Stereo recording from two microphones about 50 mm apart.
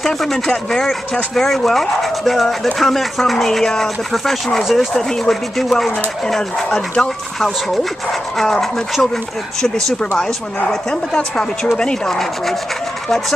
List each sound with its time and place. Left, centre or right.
0.0 s speech: centre